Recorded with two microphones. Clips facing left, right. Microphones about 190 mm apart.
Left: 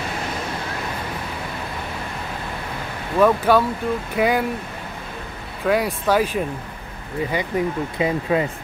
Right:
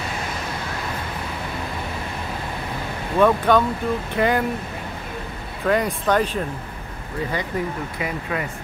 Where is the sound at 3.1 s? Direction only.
5° left (ahead or behind).